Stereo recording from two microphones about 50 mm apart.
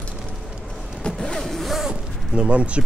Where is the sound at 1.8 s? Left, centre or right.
Right.